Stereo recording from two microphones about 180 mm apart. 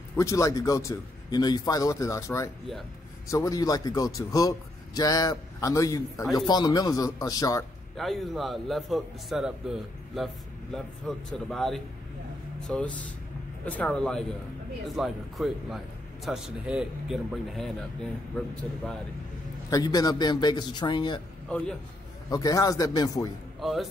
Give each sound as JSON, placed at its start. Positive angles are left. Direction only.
{"t": 0.1, "sound": "a man's voice", "side_deg": 15}
{"t": 7.9, "sound": "a man's voice", "side_deg": 0}
{"t": 19.7, "sound": "a man's voice", "side_deg": 20}
{"t": 21.5, "sound": "a man's voice", "side_deg": 5}
{"t": 22.3, "sound": "a man's voice", "side_deg": 20}
{"t": 23.6, "sound": "a man's voice", "side_deg": 0}